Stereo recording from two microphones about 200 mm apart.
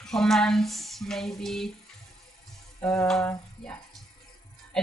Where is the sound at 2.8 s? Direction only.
10° left (ahead or behind).